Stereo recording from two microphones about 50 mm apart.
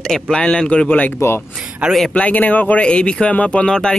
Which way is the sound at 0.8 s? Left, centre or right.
Left.